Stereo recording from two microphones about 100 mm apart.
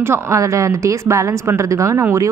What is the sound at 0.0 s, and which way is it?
A woman's voice, 30° right (ahead or behind).